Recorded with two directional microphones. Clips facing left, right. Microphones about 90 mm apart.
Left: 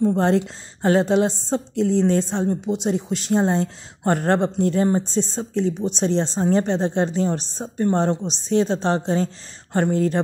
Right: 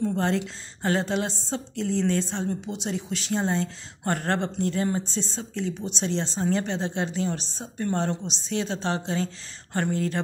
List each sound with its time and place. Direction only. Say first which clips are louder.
0.0 s speech: left 7 dB; 40° left (ahead or behind)
7.7 s speech: left 7 dB; 30° left (ahead or behind)